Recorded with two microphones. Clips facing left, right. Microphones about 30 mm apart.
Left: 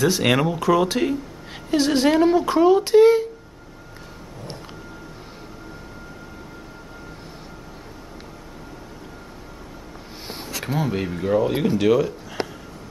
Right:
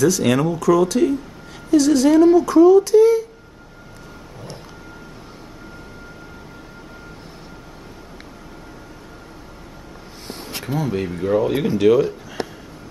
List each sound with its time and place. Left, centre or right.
0.0 s speech: left
10.9 s speech: centre